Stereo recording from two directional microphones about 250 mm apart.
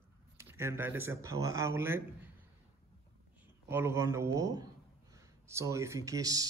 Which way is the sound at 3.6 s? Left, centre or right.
Centre.